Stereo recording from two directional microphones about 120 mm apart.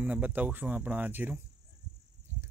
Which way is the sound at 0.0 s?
10° right (ahead or behind).